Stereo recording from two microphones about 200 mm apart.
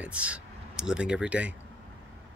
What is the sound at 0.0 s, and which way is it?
Speech, 5° right (ahead or behind).